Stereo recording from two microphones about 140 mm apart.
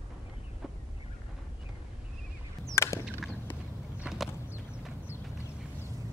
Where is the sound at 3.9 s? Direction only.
Centre (ahead or behind).